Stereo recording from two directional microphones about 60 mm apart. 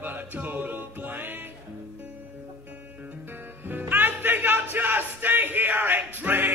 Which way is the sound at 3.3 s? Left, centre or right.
Right.